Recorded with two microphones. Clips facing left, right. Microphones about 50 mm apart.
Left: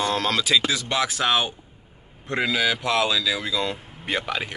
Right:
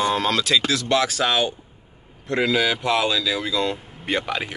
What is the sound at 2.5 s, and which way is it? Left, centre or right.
Speech, centre.